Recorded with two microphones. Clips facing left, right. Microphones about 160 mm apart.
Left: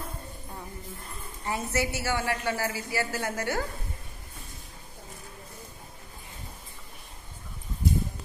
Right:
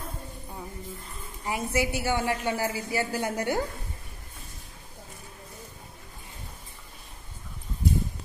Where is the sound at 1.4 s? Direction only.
15° right (ahead or behind).